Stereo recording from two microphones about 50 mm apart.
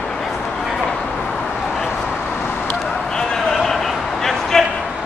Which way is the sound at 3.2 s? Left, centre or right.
Centre.